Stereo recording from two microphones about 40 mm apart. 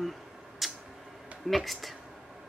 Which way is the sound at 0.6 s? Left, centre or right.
Centre.